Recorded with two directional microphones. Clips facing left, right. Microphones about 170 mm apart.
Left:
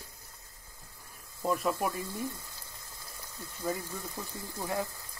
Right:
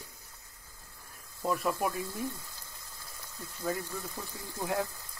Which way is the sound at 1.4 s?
Centre (ahead or behind).